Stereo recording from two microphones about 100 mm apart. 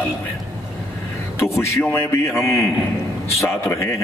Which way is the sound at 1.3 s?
25° left (ahead or behind).